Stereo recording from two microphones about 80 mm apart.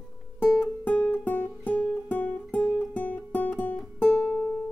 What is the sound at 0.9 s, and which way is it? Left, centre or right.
Music, left.